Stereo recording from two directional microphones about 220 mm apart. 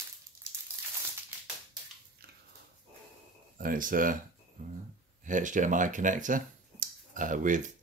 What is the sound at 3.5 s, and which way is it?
Speech, 40° right (ahead or behind).